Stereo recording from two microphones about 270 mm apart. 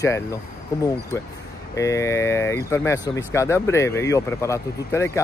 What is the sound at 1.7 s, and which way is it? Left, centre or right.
Speech, centre.